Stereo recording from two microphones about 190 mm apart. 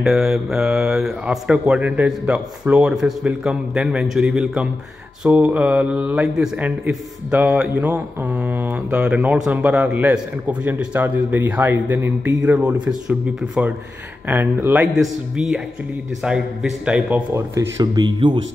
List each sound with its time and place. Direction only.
0.0 s speech: centre (ahead or behind)
17.6 s speech: 20° right (ahead or behind)